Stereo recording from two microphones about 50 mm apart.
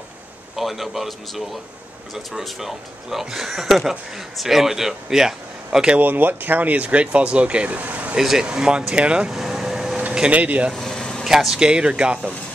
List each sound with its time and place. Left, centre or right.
0.6 s speech: centre
5.9 s speech: right
8.2 s speech: centre
9.3 s vehicle: centre
10.3 s speech: right
10.7 s vehicle: centre
11.2 s speech: centre
11.6 s speech: centre